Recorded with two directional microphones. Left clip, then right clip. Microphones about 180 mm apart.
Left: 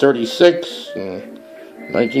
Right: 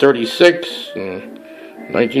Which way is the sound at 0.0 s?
Centre (ahead or behind).